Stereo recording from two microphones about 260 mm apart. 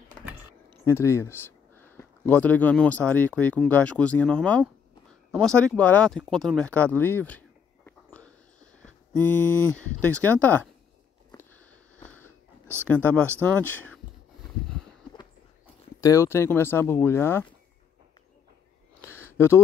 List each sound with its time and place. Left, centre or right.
0.8 s speech: centre
9.1 s mantra: centre
9.8 s speech: centre
12.8 s speech: centre
15.1 s speech: centre
19.0 s a sound: centre